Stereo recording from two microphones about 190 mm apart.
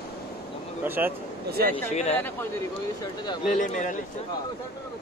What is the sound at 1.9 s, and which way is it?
Speech, 35° left (ahead or behind).